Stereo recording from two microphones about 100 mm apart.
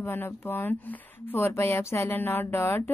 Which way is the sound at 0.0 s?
20° left (ahead or behind).